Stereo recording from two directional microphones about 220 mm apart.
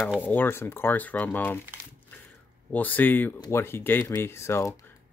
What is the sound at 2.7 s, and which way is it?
Speech, 10° left (ahead or behind).